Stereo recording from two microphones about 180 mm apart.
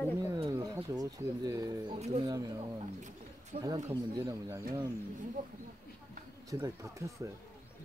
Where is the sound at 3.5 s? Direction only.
35° right (ahead or behind).